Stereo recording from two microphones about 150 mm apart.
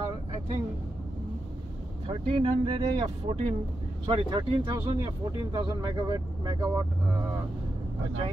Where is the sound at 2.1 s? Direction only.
40° right (ahead or behind).